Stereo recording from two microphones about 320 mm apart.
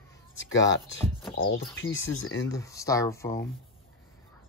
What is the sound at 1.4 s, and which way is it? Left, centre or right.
Speech, left.